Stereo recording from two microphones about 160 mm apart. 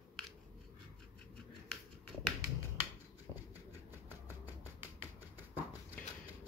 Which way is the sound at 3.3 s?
20° right (ahead or behind).